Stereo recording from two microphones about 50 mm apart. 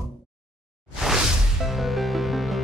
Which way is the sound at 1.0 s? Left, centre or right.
Centre.